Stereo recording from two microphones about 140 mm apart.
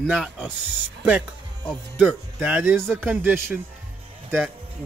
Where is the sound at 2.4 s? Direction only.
10° right (ahead or behind).